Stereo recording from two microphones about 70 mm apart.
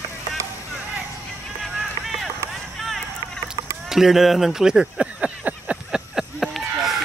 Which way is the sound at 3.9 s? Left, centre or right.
Centre.